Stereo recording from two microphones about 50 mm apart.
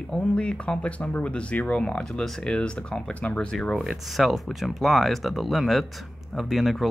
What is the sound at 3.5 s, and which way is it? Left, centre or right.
Speech, centre.